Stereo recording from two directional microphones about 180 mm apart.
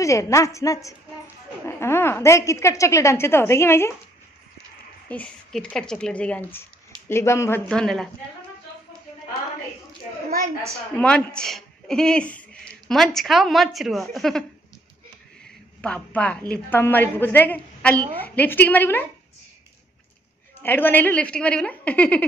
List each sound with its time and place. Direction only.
0.0 s a woman's voice: 15° left (ahead or behind)
5.0 s a woman's voice: 5° left (ahead or behind)
11.0 s a woman's voice: 5° left (ahead or behind)
15.8 s a woman's voice: 5° left (ahead or behind)
20.5 s a woman's voice: 10° left (ahead or behind)